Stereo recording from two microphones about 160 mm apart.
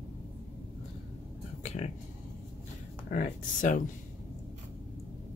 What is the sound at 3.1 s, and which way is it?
Speech, 55° left (ahead or behind).